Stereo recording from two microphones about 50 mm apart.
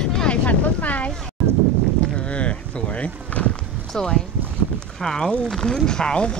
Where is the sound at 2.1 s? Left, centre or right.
Left.